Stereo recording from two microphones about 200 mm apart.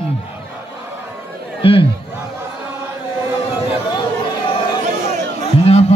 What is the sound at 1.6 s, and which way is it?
Crowd, 30° left (ahead or behind).